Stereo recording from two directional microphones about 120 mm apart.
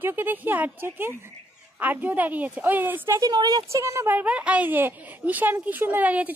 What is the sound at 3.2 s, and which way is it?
Speech, 35° right (ahead or behind).